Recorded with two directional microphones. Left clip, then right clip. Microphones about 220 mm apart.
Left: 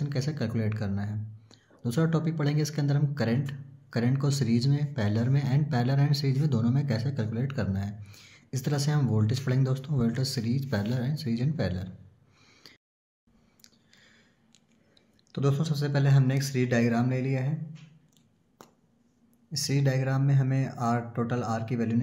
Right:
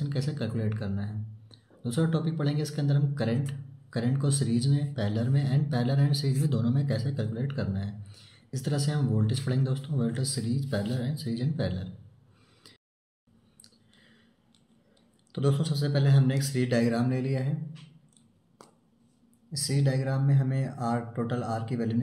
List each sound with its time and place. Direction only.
0.0 s speech: 30° left (ahead or behind)
12.6 s a sound: 25° left (ahead or behind)
15.3 s speech: 30° left (ahead or behind)
19.5 s speech: 35° left (ahead or behind)